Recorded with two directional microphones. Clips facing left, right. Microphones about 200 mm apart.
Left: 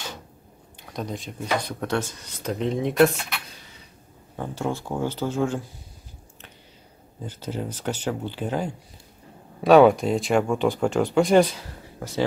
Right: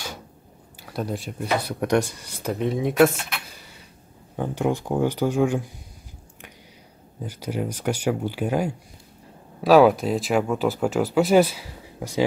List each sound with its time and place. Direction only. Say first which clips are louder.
0.7 s speech: right 3 dB; 5° right (ahead or behind)
4.4 s speech: right 4 dB; 15° right (ahead or behind)
7.2 s speech: right 3 dB; 10° right (ahead or behind)